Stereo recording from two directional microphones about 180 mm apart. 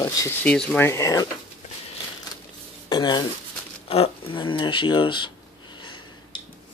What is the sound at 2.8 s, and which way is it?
Speech, 25° left (ahead or behind).